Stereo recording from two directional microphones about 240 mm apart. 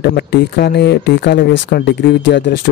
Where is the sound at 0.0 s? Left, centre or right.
Left.